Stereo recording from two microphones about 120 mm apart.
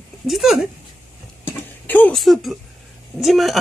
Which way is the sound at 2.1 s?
Centre (ahead or behind).